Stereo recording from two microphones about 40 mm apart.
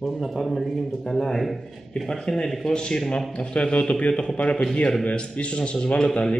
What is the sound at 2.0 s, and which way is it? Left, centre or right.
Speech, centre.